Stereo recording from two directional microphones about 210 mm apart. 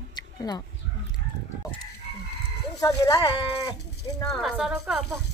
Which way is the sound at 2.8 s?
15° left (ahead or behind).